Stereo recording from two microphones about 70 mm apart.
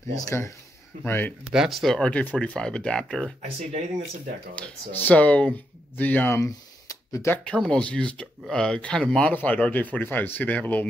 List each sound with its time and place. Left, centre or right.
0.1 s speech: left
1.0 s speech: left
1.5 s speech: centre
2.0 s speech: centre
4.6 s speech: left
6.3 s a sound: left
7.4 s speech: centre
9.3 s speech: left